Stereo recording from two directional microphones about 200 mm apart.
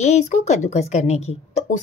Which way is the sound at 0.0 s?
35° left (ahead or behind).